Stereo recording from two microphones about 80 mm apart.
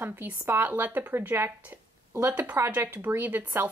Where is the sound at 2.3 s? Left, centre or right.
Centre.